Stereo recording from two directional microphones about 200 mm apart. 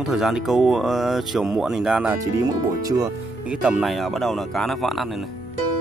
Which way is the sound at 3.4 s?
5° right (ahead or behind).